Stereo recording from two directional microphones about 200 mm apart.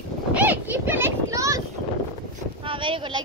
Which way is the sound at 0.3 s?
10° right (ahead or behind).